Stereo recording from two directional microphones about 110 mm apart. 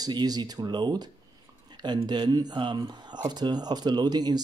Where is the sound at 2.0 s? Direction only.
40° right (ahead or behind).